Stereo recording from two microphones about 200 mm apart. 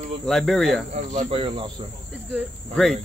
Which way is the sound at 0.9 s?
35° right (ahead or behind).